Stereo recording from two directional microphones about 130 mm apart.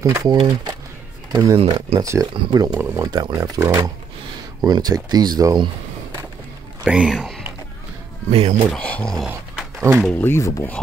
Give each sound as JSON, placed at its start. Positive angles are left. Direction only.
{"t": 0.0, "sound": "speech", "side_deg": -25}
{"t": 0.4, "sound": "speech", "side_deg": -40}
{"t": 1.3, "sound": "speech", "side_deg": -25}
{"t": 1.6, "sound": "speech", "side_deg": -50}
{"t": 2.0, "sound": "speech", "side_deg": -25}
{"t": 6.8, "sound": "speech", "side_deg": -5}
{"t": 8.3, "sound": "speech", "side_deg": -50}
{"t": 8.6, "sound": "speech", "side_deg": 10}
{"t": 9.2, "sound": "dog", "side_deg": -5}
{"t": 9.8, "sound": "speech", "side_deg": -15}
{"t": 10.0, "sound": "speech", "side_deg": 15}